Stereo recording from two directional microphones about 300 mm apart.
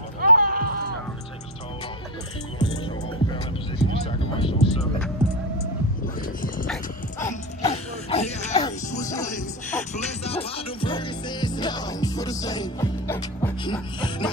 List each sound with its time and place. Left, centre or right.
0.2 s a sound: right
2.6 s music: centre
6.4 s music: left
6.7 s dog: centre
7.6 s music: left
9.8 s music: left